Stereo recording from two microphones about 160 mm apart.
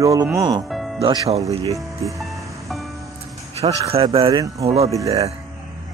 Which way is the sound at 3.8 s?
35° right (ahead or behind).